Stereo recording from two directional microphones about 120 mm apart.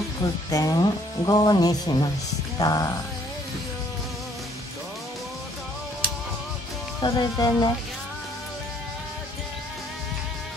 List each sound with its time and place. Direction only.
0.5 s speech: 30° left (ahead or behind)
7.0 s speech: 35° left (ahead or behind)